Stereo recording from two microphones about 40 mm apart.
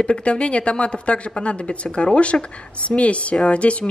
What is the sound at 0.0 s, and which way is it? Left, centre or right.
Speech, left.